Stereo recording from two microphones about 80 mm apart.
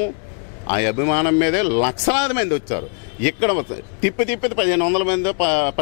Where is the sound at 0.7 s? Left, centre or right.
Centre.